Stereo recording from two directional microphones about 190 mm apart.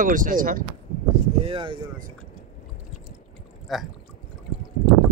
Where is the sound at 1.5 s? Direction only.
25° right (ahead or behind).